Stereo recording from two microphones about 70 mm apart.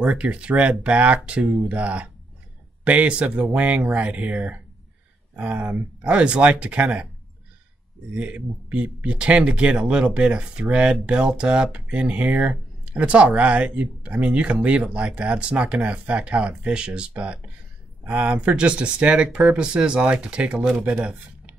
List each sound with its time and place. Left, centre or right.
0.0 s speech: centre
8.1 s speech: right